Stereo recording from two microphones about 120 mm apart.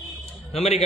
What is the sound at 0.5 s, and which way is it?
Speech, 60° left (ahead or behind).